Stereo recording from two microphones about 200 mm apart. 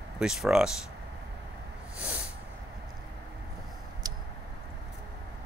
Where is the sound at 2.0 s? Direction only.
5° right (ahead or behind).